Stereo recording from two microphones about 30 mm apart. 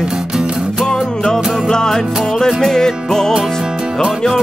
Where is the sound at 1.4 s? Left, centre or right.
Centre.